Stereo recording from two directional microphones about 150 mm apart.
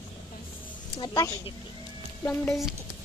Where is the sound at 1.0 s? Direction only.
25° left (ahead or behind).